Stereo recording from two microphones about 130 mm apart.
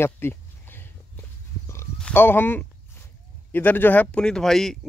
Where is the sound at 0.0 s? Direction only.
15° left (ahead or behind).